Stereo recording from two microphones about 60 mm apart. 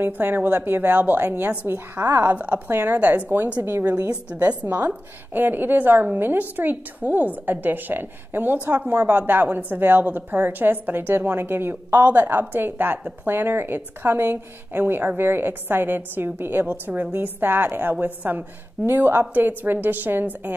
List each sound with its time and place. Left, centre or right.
0.0 s a woman's voice: right